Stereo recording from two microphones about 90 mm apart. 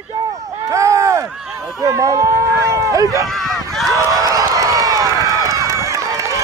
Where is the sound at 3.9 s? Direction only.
40° right (ahead or behind).